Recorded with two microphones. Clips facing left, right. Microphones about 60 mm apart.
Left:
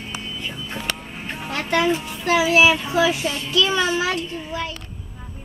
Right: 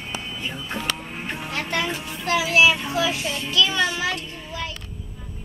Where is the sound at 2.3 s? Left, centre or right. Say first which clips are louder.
Left 3 dB; centre.